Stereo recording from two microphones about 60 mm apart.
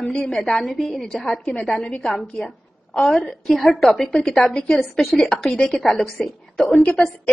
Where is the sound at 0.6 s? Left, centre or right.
Centre.